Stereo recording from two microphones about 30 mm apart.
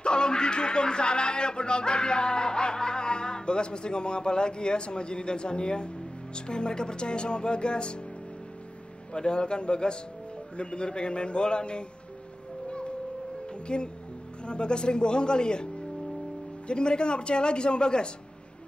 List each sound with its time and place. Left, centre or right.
0.0 s speech: left
9.1 s speech: left
12.6 s a sound: left
13.7 s speech: left